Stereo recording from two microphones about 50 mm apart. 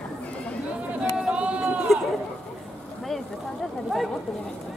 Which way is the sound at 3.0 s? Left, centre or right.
Centre.